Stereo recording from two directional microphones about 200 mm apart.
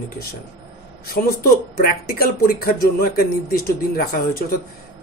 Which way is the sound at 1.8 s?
45° left (ahead or behind).